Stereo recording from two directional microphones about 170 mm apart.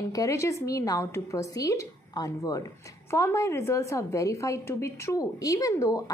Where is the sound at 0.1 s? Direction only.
20° left (ahead or behind).